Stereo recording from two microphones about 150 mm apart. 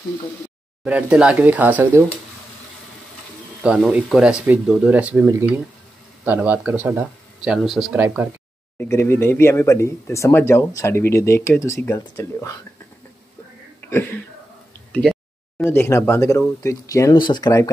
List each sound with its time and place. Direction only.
0.8 s speech: 5° right (ahead or behind)
3.6 s speech: 5° right (ahead or behind)
8.7 s speech: 15° left (ahead or behind)
13.7 s speech: 15° left (ahead or behind); by 17.5 s 30° left (ahead or behind)